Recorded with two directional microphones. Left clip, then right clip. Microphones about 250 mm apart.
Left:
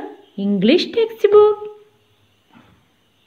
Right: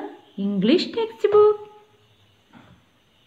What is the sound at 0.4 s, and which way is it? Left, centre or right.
A woman's voice, centre.